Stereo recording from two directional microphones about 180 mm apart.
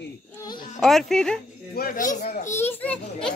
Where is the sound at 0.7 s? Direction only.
Centre (ahead or behind).